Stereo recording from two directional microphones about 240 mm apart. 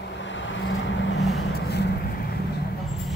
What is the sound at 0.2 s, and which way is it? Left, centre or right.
Vehicle, left.